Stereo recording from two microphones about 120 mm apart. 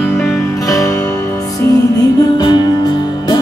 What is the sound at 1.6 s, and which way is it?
Music, 30° left (ahead or behind).